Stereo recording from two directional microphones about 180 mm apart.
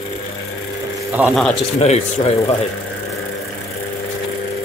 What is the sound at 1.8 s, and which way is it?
Speech, 35° left (ahead or behind).